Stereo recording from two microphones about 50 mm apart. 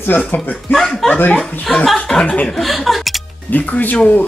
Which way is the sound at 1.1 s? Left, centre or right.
Left.